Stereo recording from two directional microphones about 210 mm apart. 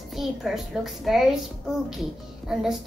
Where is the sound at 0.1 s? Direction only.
Centre (ahead or behind).